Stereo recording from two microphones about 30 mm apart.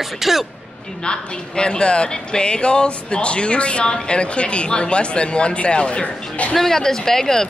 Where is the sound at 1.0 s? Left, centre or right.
Left.